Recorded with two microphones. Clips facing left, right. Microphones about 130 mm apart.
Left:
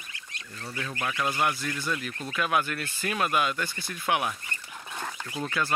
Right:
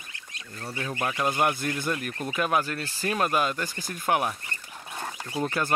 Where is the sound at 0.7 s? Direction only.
25° right (ahead or behind).